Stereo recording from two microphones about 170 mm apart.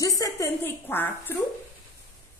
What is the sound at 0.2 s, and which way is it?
A woman's voice, 15° left (ahead or behind).